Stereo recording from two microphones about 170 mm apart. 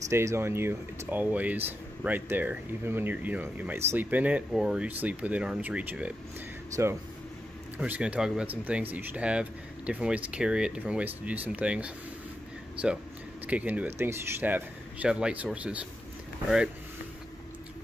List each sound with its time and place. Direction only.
0.1 s speech: 15° right (ahead or behind)